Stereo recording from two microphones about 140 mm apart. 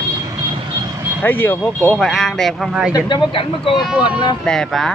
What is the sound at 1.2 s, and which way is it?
Speech, 15° left (ahead or behind).